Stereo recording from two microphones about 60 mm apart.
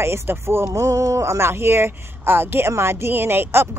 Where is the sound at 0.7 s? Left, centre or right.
Right.